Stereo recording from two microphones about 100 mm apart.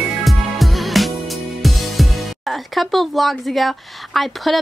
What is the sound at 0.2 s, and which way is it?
Music, centre (ahead or behind).